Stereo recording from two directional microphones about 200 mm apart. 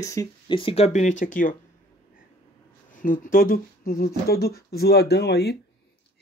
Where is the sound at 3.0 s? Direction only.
45° left (ahead or behind).